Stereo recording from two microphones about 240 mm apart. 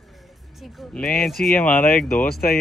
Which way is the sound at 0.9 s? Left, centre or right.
Centre.